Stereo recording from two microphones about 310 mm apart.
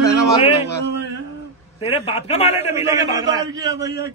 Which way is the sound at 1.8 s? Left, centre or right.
Centre.